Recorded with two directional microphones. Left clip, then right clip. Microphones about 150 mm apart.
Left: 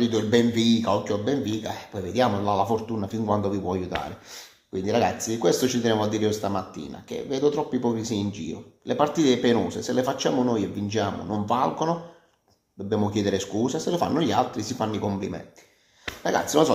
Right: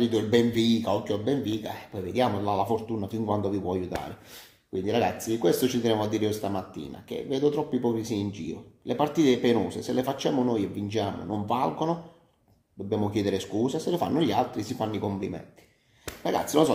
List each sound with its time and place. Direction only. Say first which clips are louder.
0.0 s speech: left 2 dB; 10° right (ahead or behind)